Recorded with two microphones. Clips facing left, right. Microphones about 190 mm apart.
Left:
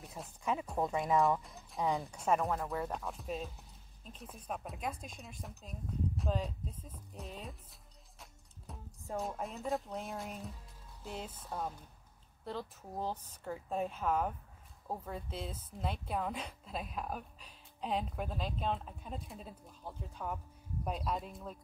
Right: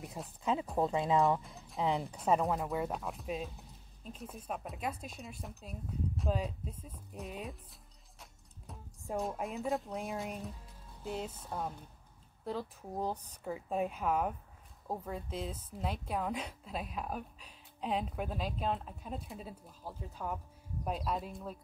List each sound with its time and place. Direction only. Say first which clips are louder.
0.0 s a sound: right 3 dB; centre (ahead or behind)
0.4 s speech: right 3 dB; 20° right (ahead or behind)
1.4 s speech: right 2 dB; centre (ahead or behind)
1.8 s speech: right 1 dB; 20° right (ahead or behind)
2.1 s a woman's voice: right 3 dB; 5° right (ahead or behind)
8.7 s music: even; centre (ahead or behind)
9.1 s a woman's voice: right 3 dB; centre (ahead or behind)